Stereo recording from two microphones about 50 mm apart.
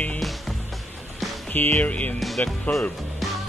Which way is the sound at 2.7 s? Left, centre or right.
Left.